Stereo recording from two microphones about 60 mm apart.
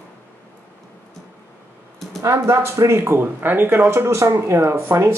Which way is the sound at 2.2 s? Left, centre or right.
Right.